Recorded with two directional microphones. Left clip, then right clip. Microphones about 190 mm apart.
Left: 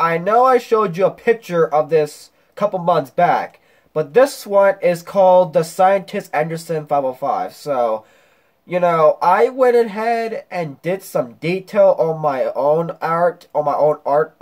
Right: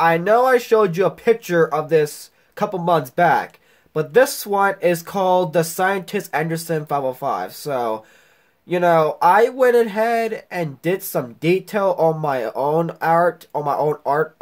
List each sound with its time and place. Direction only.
0.0 s speech: 55° right (ahead or behind)